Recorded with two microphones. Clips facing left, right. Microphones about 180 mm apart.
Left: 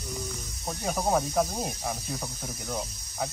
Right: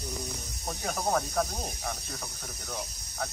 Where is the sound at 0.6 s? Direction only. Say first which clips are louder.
Left 3 dB; 10° left (ahead or behind).